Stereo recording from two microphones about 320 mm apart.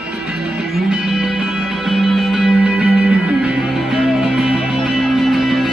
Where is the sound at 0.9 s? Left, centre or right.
Centre.